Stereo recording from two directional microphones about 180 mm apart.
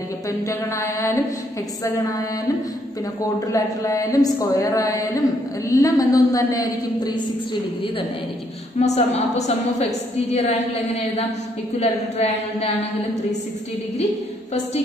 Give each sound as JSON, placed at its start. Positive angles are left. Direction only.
{"t": 0.5, "sound": "mantra", "side_deg": 15}
{"t": 2.0, "sound": "a woman's voice", "side_deg": 20}
{"t": 8.7, "sound": "a woman's voice", "side_deg": 35}